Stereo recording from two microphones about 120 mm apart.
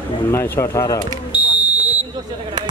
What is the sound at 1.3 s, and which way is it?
Smoke detector, 10° right (ahead or behind).